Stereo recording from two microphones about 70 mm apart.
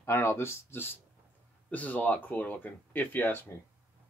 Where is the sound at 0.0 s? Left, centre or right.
Left.